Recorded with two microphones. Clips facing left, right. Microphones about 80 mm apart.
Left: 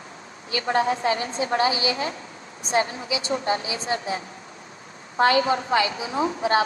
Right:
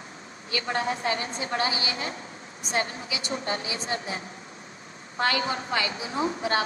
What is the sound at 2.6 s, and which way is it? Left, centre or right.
A woman's voice, left.